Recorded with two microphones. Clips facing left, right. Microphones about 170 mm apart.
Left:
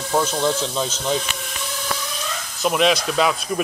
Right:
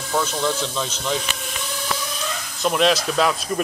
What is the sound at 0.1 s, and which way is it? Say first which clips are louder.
Speech: left 2 dB; 20° left (ahead or behind).